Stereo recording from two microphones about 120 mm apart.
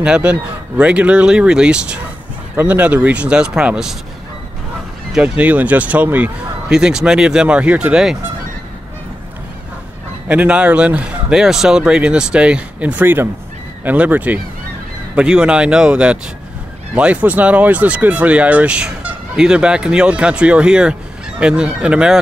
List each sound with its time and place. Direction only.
0.0 s speech: 10° right (ahead or behind)
5.1 s speech: 10° right (ahead or behind)
10.2 s speech: 10° right (ahead or behind)